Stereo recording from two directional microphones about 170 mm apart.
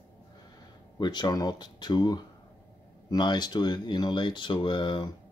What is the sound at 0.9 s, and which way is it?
Speech, 25° left (ahead or behind).